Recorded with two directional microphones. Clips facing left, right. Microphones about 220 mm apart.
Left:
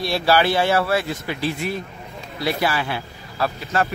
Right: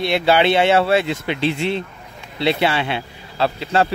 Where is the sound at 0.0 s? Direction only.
20° right (ahead or behind).